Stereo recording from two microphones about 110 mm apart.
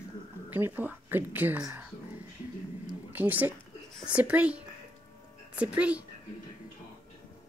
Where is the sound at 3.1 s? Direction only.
15° right (ahead or behind).